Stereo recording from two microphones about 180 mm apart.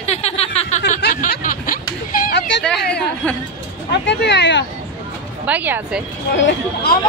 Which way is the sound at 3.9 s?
70° left (ahead or behind).